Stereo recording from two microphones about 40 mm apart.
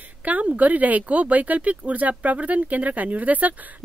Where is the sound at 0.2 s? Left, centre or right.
Right.